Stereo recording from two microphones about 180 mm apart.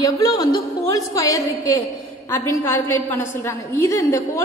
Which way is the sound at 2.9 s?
15° left (ahead or behind).